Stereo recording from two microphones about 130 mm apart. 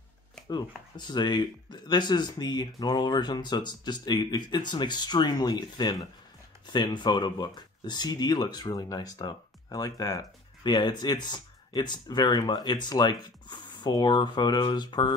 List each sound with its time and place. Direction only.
0.5 s speech: 35° left (ahead or behind)